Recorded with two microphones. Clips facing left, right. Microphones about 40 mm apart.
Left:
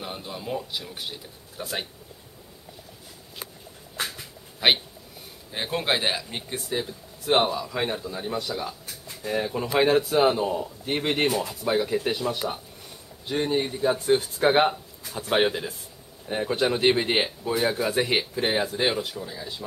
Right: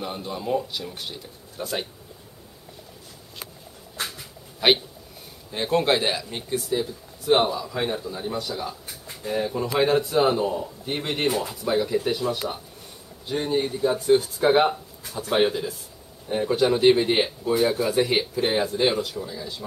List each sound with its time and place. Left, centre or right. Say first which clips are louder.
0.0 s speech: right 4 dB; centre
4.0 s a sound: left 1 dB; centre
5.5 s speech: right 5 dB; centre
11.2 s speech: right 1 dB; centre
11.6 s speech: right 1 dB; centre
13.4 s speech: right 1 dB; centre